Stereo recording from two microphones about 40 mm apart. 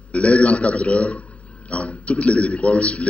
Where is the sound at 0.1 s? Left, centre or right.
Left.